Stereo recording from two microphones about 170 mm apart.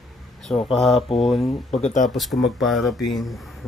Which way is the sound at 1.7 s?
45° left (ahead or behind).